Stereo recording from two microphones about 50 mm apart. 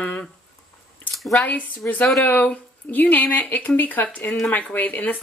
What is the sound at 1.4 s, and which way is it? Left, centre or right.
Speech, left.